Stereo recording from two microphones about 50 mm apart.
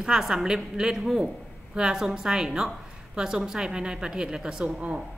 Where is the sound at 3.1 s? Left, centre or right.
Centre.